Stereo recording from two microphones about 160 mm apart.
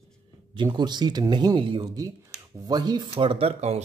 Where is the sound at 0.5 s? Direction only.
30° right (ahead or behind).